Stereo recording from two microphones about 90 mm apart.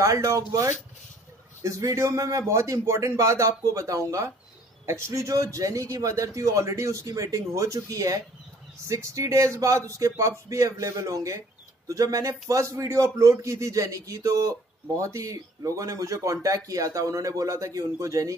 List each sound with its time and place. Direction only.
0.0 s a man's voice: 40° right (ahead or behind)